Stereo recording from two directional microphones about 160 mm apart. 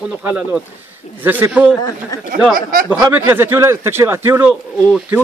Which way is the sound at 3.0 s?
15° right (ahead or behind).